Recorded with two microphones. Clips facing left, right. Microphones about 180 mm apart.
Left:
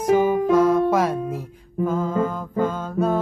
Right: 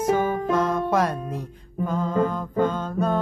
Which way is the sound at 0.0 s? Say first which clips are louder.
Left 4 dB; 10° left (ahead or behind).